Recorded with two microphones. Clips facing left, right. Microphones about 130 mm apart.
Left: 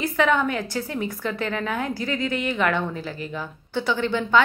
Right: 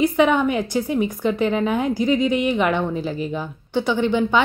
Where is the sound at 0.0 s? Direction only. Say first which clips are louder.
Right 4 dB; 20° right (ahead or behind).